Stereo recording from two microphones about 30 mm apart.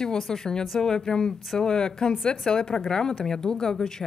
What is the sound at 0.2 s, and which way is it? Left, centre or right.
Speech, centre.